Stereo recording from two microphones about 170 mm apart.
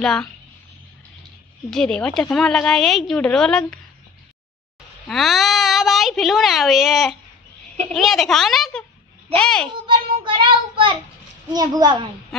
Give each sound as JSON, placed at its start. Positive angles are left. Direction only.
{"t": 0.0, "sound": "a woman's voice", "side_deg": 5}
{"t": 1.7, "sound": "a woman's voice", "side_deg": 5}
{"t": 5.0, "sound": "a woman's voice", "side_deg": 0}
{"t": 9.8, "sound": "child singing", "side_deg": -30}
{"t": 11.5, "sound": "a woman's voice", "side_deg": -25}